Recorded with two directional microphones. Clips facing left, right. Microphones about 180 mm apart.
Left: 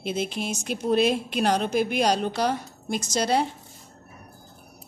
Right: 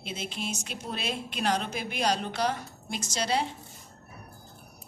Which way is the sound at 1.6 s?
55° left (ahead or behind).